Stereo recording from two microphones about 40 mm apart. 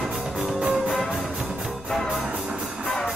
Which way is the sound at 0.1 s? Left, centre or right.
Centre.